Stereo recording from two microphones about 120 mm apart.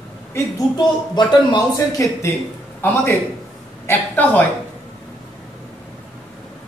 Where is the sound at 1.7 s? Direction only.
25° left (ahead or behind).